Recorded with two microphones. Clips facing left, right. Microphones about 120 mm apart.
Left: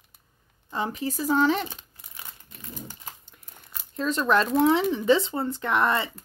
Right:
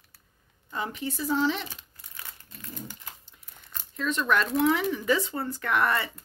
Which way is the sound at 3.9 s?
35° left (ahead or behind).